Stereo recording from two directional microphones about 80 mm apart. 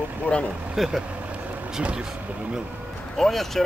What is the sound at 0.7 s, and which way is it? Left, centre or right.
Speech, centre.